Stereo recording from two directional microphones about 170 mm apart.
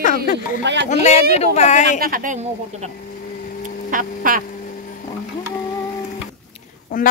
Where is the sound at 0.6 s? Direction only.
90° right.